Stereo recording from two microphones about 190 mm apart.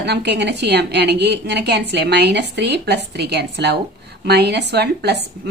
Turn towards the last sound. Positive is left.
turn(degrees=-60)  # may be behind; listen again after turning